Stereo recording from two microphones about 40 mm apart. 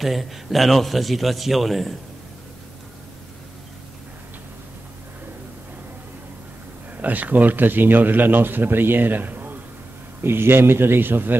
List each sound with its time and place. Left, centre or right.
0.0 s a man's voice: centre
7.0 s a man's voice: right
10.2 s a man's voice: right